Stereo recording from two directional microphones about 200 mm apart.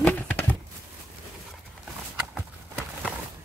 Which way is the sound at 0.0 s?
5° left (ahead or behind).